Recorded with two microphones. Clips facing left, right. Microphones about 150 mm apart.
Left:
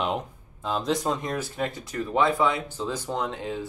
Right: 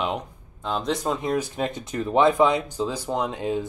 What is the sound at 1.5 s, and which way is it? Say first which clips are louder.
Speech: right 2 dB; 20° right (ahead or behind).